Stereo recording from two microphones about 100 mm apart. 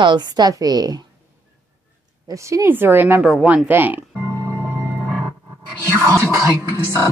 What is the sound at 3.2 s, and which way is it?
Speech, 10° right (ahead or behind).